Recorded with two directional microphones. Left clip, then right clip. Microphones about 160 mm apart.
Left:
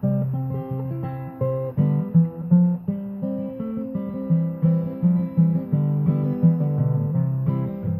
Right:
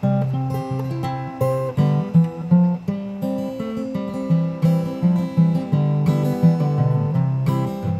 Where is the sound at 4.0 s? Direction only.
20° right (ahead or behind).